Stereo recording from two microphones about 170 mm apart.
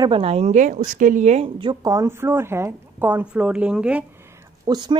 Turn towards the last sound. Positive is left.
turn(degrees=-25)  # may be behind; listen again after turning